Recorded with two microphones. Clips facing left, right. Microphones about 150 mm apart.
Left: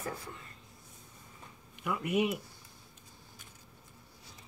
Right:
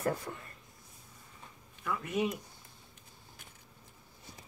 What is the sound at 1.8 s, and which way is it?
Speech, 15° left (ahead or behind).